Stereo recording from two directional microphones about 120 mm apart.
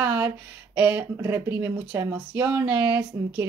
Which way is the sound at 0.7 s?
10° right (ahead or behind).